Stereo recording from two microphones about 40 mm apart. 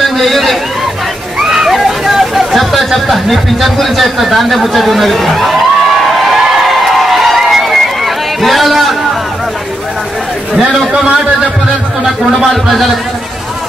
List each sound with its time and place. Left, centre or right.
0.2 s speech: centre
1.4 s speech: centre
6.7 s crowd: centre
7.7 s run: centre
10.9 s a man's voice: right